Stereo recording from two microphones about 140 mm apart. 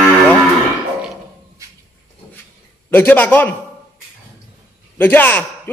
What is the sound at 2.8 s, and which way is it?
Speech, 15° left (ahead or behind).